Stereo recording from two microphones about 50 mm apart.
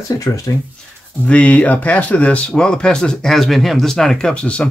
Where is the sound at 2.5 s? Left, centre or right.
Centre.